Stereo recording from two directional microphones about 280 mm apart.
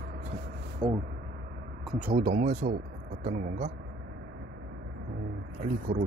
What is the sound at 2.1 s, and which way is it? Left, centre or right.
Speech, right.